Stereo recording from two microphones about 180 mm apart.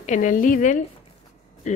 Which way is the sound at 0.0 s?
45° left (ahead or behind).